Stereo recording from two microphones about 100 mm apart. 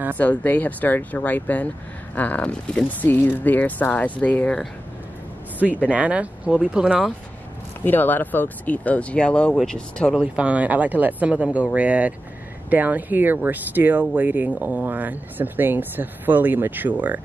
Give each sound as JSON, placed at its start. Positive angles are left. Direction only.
{"t": 0.2, "sound": "speech", "side_deg": 15}
{"t": 5.9, "sound": "speech", "side_deg": -15}
{"t": 7.8, "sound": "speech", "side_deg": 20}
{"t": 10.1, "sound": "speech", "side_deg": -10}